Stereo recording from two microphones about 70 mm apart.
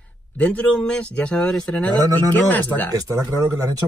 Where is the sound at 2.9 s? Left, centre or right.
Right.